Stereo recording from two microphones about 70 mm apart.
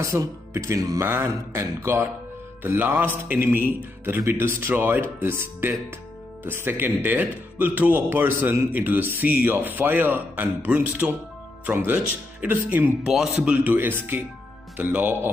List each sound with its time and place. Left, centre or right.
0.0 s speech: right
0.7 s a sound: right
1.5 s a man's voice: right
11.0 s speech: centre
11.8 s a man's voice: right
13.7 s a man's voice: right